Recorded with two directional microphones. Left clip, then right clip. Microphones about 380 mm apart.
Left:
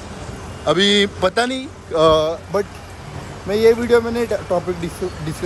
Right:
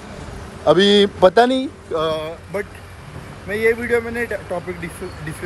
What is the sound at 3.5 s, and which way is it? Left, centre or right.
Speech, centre.